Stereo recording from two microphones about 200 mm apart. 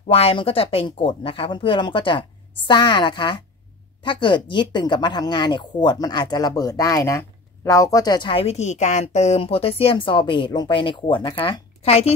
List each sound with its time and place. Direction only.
0.1 s speech: 30° left (ahead or behind)